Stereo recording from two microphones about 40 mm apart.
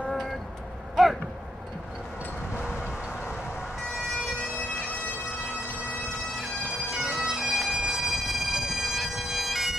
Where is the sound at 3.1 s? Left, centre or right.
Left.